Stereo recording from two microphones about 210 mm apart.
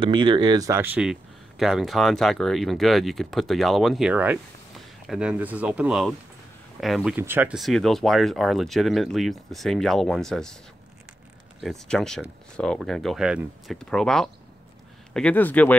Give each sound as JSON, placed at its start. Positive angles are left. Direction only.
{"t": 0.0, "sound": "speech", "side_deg": -25}
{"t": 11.6, "sound": "speech", "side_deg": 0}